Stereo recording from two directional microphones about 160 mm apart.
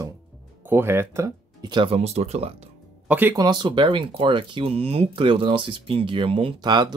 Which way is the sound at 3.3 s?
25° right (ahead or behind).